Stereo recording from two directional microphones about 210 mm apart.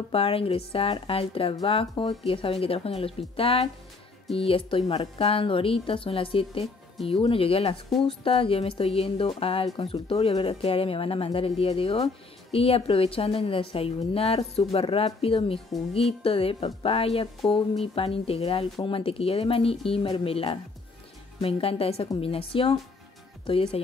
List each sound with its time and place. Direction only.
0.1 s a woman's voice: 25° left (ahead or behind)